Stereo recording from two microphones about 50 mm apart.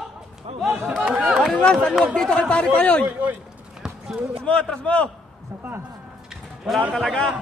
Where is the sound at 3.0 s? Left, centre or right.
Right.